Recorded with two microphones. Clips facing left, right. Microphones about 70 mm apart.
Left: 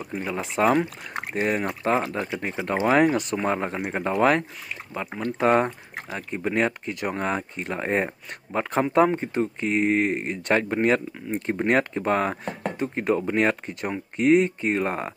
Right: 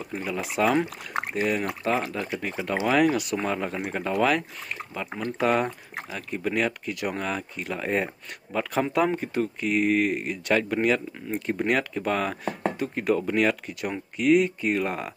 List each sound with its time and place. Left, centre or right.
0.0 s speech: left
0.7 s speech: centre
1.3 s speech: left
2.1 s speech: left